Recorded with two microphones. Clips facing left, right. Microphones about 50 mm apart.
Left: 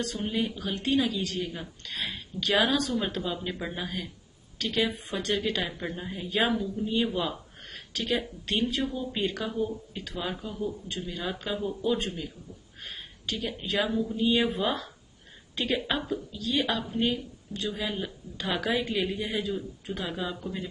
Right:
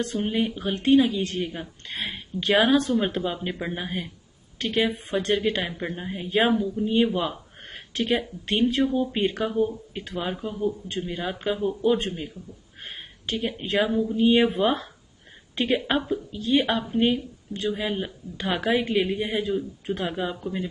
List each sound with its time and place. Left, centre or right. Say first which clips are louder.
0.0 s speech: right 5 dB; right